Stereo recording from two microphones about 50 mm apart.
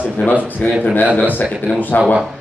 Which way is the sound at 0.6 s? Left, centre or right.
Left.